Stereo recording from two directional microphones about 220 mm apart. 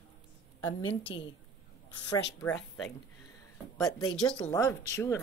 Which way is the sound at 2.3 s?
5° left (ahead or behind).